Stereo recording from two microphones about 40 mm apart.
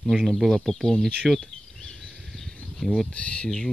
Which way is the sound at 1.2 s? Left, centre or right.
Centre.